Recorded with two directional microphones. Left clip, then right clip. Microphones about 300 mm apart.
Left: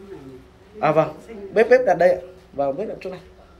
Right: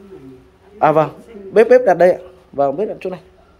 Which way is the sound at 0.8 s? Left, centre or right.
Centre.